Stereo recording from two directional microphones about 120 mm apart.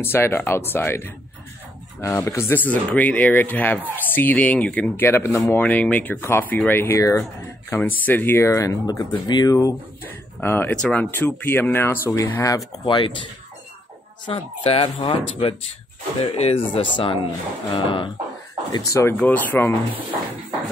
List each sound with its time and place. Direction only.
0.0 s speech: 20° left (ahead or behind)
10.4 s speech: 15° left (ahead or behind)
12.8 s speech: 45° left (ahead or behind)
14.2 s speech: 50° left (ahead or behind)
18.7 s speech: 25° left (ahead or behind)
19.1 s speech: 15° left (ahead or behind)